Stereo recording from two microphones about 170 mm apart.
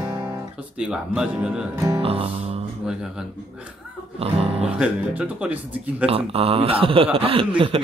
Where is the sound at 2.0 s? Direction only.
35° right (ahead or behind).